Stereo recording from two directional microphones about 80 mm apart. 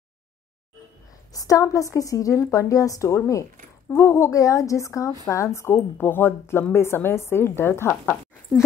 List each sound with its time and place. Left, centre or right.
1.3 s a woman's voice: left